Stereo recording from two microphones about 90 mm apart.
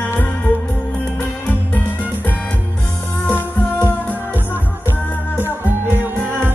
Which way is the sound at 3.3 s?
25° left (ahead or behind).